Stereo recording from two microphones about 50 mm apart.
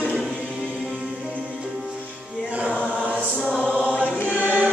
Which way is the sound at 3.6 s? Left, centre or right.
Right.